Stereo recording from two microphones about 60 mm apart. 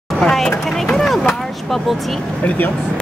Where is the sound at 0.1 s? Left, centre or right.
Centre.